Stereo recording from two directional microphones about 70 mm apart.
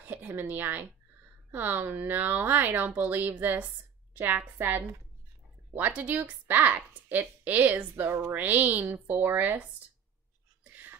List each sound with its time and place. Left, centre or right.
0.1 s a woman's voice: right
7.9 s a woman's voice: right
10.6 s a sound: right